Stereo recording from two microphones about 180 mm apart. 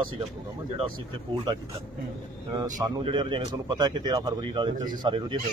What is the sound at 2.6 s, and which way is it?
A man's voice, 25° right (ahead or behind).